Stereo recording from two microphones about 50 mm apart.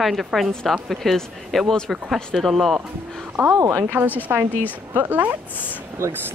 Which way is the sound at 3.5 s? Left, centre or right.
Right.